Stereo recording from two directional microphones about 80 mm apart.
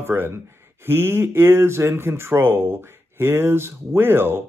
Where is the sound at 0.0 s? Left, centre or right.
Right.